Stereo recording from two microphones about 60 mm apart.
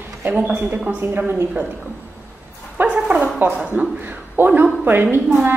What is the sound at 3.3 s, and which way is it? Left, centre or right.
A woman's voice, right.